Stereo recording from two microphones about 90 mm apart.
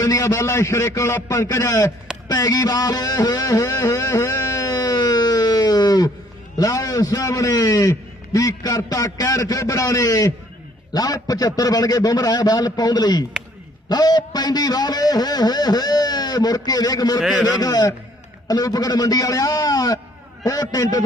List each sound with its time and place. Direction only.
0.0 s a man's voice: 40° left (ahead or behind)
2.2 s music: 45° left (ahead or behind)
6.6 s a man's voice: 40° left (ahead or behind)
17.2 s a man's voice: 10° right (ahead or behind)
17.5 s a man's voice: 45° left (ahead or behind)